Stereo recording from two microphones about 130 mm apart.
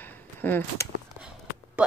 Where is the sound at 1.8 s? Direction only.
10° right (ahead or behind).